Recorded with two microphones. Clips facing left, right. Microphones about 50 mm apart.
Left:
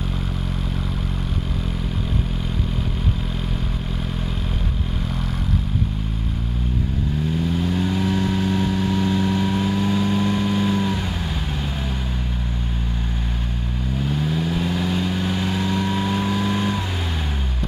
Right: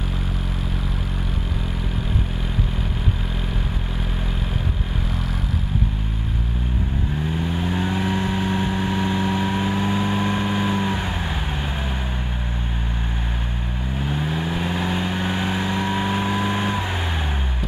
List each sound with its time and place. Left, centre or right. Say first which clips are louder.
7.4 s vehicle: left 1 dB; right
14.0 s vehicle: left 1 dB; right